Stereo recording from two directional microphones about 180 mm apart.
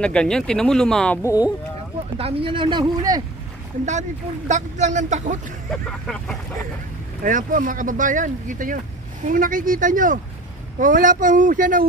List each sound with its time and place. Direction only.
0.0 s speech: 5° left (ahead or behind)
1.2 s speech: 20° left (ahead or behind)
2.1 s speech: 30° right (ahead or behind)
4.5 s speech: 40° right (ahead or behind)
5.7 s speech: 5° left (ahead or behind)
7.2 s speech: 45° right (ahead or behind)